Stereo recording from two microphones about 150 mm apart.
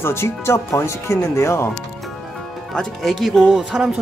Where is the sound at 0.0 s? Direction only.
15° left (ahead or behind).